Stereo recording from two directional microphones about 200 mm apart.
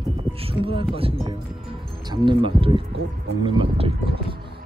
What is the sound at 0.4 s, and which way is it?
Music, 30° right (ahead or behind).